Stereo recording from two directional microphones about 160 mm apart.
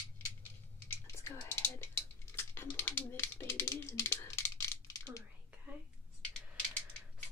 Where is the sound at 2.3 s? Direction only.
15° left (ahead or behind).